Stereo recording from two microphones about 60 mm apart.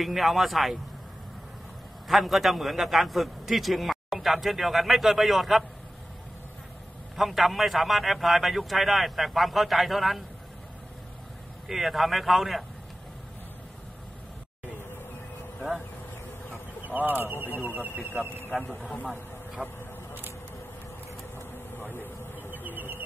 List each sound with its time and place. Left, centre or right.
0.0 s a man's voice: centre
2.0 s a man's voice: centre
7.2 s a man's voice: centre
11.6 s a man's voice: centre
16.8 s speech: right
18.5 s a man's voice: centre
19.0 s vehicle: centre
22.5 s a sound: right